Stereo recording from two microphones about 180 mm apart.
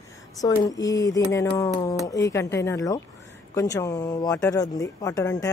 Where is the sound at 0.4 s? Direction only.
20° left (ahead or behind).